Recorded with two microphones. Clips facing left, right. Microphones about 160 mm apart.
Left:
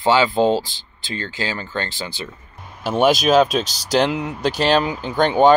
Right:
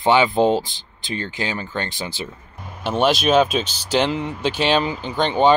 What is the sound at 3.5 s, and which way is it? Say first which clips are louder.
Speech: left 1 dB; 40° left (ahead or behind).